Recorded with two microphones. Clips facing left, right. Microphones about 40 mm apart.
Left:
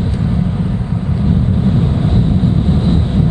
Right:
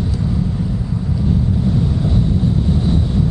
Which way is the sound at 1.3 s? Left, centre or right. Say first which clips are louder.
Left 3 dB; left.